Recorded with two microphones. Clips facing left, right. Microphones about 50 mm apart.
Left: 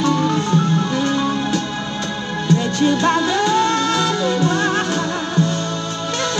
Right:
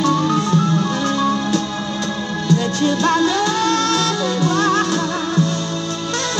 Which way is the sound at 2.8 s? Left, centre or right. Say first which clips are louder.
Even; left.